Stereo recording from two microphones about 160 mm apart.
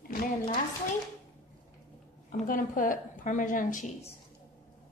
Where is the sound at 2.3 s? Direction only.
55° left (ahead or behind).